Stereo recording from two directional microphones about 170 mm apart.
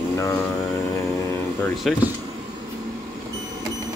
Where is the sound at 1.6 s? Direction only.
Centre (ahead or behind).